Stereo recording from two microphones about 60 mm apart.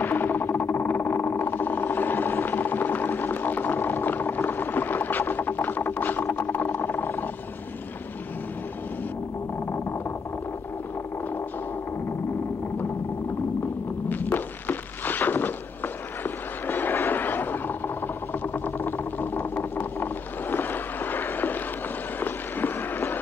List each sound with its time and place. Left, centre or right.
0.0 s vehicle: left
14.0 s thunk: left
16.6 s a sound: left